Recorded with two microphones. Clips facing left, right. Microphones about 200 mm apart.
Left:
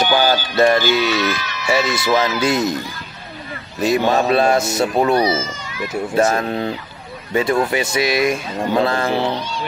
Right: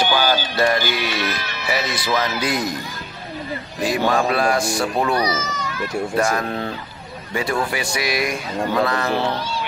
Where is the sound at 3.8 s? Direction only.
25° left (ahead or behind).